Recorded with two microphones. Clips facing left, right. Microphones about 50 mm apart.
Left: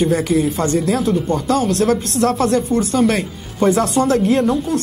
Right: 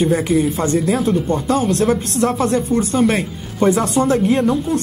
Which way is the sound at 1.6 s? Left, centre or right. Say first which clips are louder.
Even; centre.